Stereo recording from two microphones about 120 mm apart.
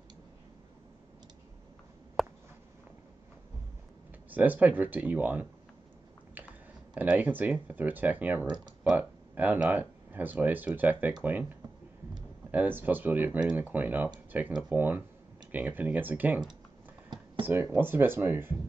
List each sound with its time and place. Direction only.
2.2 s a sound: centre (ahead or behind)
4.3 s speech: 15° right (ahead or behind)
6.4 s biting: 15° right (ahead or behind)
6.9 s speech: 10° right (ahead or behind)
17.1 s a sound: 35° right (ahead or behind)
17.5 s speech: 20° right (ahead or behind)